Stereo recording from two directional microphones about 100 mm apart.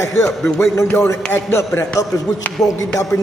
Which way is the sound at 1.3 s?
25° left (ahead or behind).